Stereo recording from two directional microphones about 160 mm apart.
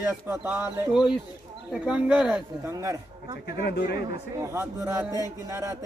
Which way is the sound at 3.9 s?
20° right (ahead or behind).